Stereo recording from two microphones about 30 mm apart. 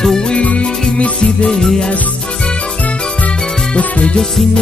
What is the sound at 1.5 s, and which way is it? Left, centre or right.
Music, centre.